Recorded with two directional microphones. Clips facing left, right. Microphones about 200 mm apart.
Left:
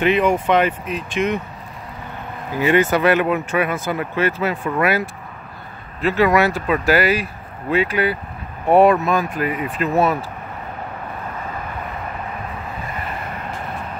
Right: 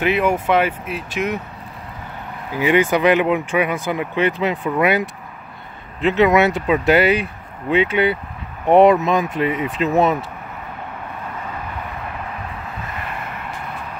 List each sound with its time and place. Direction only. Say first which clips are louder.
0.0 s speech: left 1 dB; 5° right (ahead or behind)
2.5 s speech: even; 15° right (ahead or behind)